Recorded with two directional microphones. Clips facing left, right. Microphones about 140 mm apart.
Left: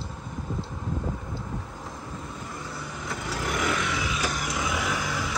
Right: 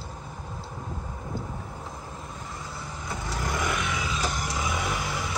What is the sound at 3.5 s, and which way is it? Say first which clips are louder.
Vehicle: left 2 dB; 20° right (ahead or behind).